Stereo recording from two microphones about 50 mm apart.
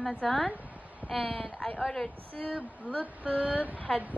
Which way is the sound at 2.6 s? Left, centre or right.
Right.